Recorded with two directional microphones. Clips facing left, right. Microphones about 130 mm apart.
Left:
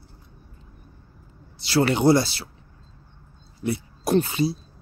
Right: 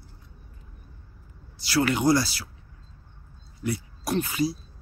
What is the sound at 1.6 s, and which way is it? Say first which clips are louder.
Speech: left 3 dB; 25° left (ahead or behind).